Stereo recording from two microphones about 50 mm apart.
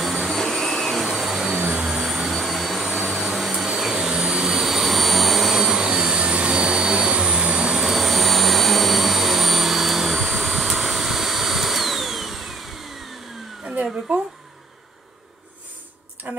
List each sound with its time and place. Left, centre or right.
0.0 s vacuum cleaner: centre
16.3 s tick-tock: right